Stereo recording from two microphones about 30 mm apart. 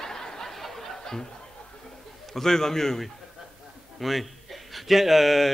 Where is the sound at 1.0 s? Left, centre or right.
Centre.